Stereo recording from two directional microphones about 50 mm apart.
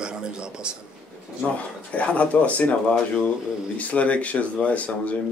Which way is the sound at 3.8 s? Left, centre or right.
Left.